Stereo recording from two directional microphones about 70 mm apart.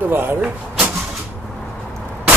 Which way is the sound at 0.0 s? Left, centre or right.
Right.